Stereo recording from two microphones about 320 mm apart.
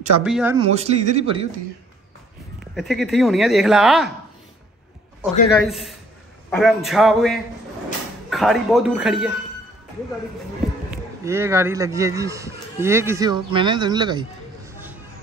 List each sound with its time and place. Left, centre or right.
0.2 s speech: centre
0.7 s speech: centre
2.6 s speech: centre
5.2 s speech: centre
10.9 s speech: centre